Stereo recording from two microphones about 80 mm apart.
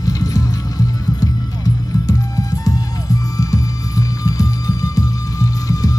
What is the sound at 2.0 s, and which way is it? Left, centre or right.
Music, left.